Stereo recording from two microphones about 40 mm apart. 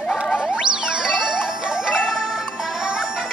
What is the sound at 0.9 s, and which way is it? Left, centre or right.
Wind chime, centre.